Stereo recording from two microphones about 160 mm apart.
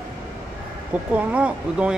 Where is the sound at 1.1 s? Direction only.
10° right (ahead or behind).